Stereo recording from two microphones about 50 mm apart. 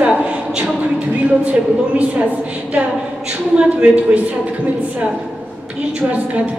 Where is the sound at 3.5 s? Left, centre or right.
Right.